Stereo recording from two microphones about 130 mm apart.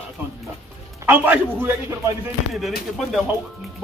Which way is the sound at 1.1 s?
15° right (ahead or behind).